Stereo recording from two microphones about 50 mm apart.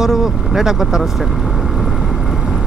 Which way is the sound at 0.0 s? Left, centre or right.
Centre.